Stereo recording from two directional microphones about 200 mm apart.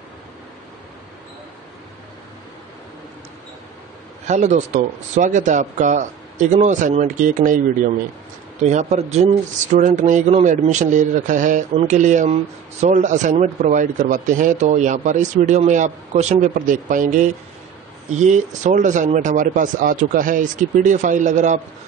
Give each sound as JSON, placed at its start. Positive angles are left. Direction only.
{"t": 4.3, "sound": "speech", "side_deg": -35}